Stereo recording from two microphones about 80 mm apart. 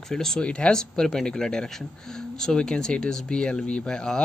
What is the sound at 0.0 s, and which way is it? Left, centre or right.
Speech, centre.